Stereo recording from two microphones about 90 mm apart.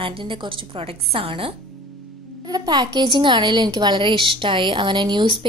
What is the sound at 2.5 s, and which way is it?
A woman's voice, 55° right (ahead or behind).